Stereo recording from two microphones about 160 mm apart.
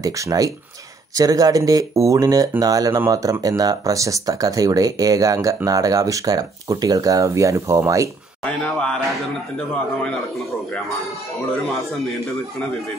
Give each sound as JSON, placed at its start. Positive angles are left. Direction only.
{"t": 0.0, "sound": "speech", "side_deg": -20}
{"t": 8.6, "sound": "a man's voice", "side_deg": 5}